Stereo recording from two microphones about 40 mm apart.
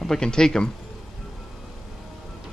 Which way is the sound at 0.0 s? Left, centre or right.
Centre.